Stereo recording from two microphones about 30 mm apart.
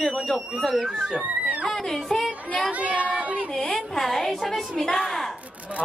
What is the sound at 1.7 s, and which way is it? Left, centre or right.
Speech, centre.